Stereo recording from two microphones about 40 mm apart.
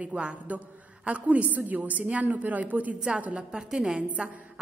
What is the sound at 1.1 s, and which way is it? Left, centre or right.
A woman's voice, right.